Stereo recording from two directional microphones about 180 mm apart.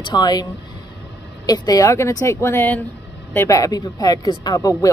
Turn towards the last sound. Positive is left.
turn(degrees=20)  # may be behind; listen again after turning